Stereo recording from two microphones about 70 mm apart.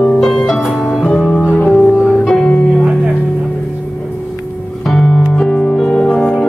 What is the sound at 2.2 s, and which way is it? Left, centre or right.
Music, centre.